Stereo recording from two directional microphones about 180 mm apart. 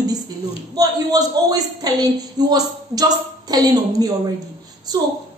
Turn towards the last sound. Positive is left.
turn(degrees=-20)  # may be behind; listen again after turning